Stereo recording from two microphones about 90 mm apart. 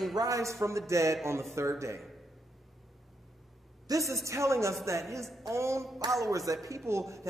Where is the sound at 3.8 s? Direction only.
40° right (ahead or behind).